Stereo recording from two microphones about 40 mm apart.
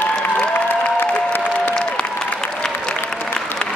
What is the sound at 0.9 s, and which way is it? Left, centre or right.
Applause, left.